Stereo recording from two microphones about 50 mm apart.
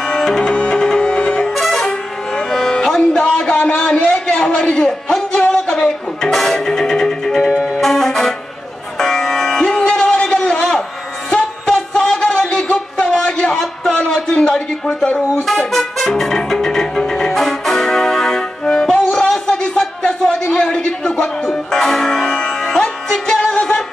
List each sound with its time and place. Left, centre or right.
0.1 s music: centre
1.6 s music: centre
7.4 s music: centre
7.8 s music: centre
10.3 s a sound: left
11.2 s music: centre
14.1 s a sound: centre
15.4 s music: centre
19.5 s a sound: centre
20.0 s music: left